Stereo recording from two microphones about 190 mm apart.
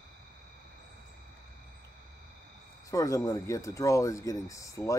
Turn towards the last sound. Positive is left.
turn(degrees=15)  # may be behind; listen again after turning